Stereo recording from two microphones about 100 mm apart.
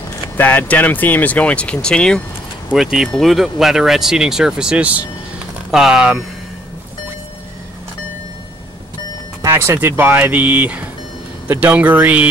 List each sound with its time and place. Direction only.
0.4 s speech: 15° left (ahead or behind)
2.7 s speech: 5° right (ahead or behind)
9.5 s speech: 25° right (ahead or behind)